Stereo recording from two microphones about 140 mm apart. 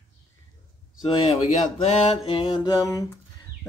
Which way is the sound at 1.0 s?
50° left (ahead or behind).